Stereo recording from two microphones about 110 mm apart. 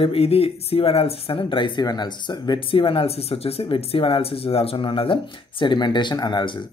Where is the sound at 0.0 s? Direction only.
60° left (ahead or behind).